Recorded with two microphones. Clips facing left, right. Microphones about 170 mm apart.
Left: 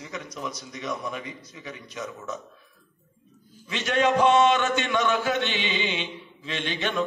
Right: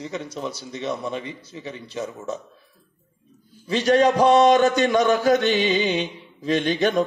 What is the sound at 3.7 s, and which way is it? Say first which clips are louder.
A man's voice: right 6 dB; 35° right (ahead or behind).